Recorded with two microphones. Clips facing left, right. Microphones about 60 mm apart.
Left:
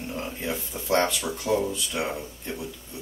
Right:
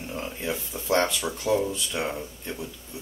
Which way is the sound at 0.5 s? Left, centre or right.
Centre.